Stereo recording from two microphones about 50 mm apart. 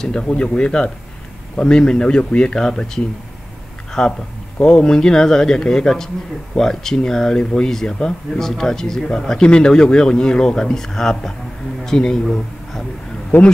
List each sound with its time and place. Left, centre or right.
0.0 s speech: centre
13.3 s speech: left